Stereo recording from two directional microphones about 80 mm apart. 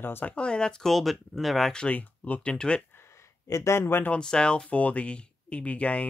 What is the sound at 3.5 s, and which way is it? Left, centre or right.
Speech, left.